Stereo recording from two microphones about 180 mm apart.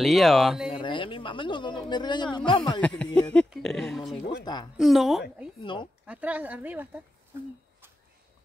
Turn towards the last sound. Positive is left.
turn(degrees=-10)  # may be behind; listen again after turning